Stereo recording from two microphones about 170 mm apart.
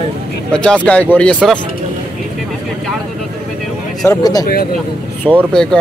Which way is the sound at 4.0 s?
20° left (ahead or behind).